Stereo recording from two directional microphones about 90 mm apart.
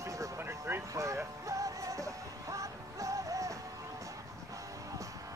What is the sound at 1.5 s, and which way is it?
Music, 40° right (ahead or behind).